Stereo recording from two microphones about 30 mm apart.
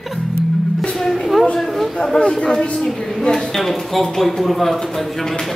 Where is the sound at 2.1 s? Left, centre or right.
Left.